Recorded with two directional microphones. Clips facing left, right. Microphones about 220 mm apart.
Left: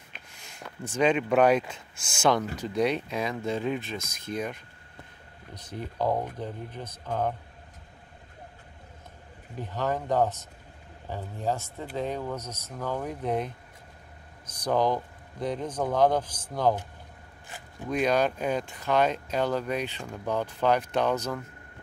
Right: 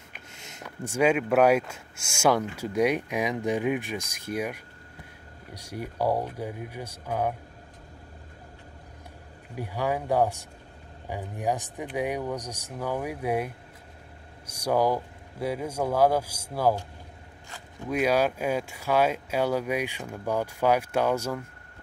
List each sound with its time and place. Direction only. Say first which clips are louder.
0.3 s a sound: right 4 dB; 20° right (ahead or behind)
0.7 s speech: right 1 dB; 10° right (ahead or behind)
9.6 s speech: right 1 dB; 10° right (ahead or behind)
14.6 s speech: right 1 dB; 10° right (ahead or behind)
17.8 s speech: right 1 dB; 5° right (ahead or behind)